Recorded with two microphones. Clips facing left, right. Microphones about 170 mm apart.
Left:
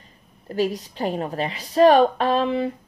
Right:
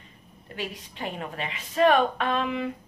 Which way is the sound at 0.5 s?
40° left (ahead or behind).